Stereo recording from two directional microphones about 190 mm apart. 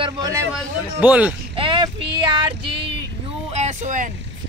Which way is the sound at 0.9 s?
10° right (ahead or behind).